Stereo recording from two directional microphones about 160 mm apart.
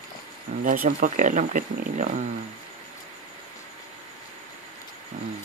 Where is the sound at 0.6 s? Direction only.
60° right (ahead or behind).